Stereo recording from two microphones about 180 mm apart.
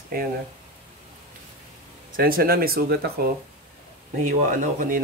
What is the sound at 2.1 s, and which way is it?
Speech, 55° right (ahead or behind).